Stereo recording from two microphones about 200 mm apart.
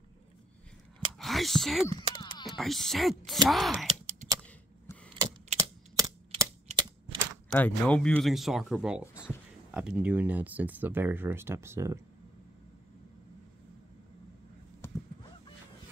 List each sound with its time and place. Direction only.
1.1 s whispering: centre (ahead or behind)
2.5 s speech: centre (ahead or behind)
4.9 s keys jangling: 10° left (ahead or behind)
5.6 s typewriter: 15° right (ahead or behind)
7.5 s speech: 5° left (ahead or behind); by 12.0 s 15° right (ahead or behind)